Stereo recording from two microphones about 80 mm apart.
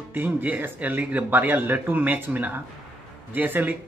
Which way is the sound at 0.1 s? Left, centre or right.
Right.